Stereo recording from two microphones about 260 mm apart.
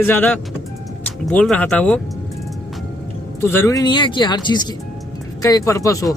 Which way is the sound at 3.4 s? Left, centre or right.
Centre.